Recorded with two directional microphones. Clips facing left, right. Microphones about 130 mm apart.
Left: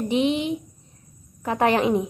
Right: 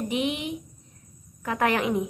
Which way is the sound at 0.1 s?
30° left (ahead or behind).